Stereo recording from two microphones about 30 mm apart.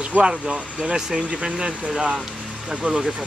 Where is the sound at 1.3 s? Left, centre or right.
Right.